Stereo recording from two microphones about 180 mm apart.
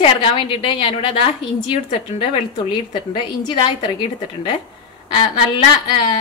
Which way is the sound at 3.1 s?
25° left (ahead or behind).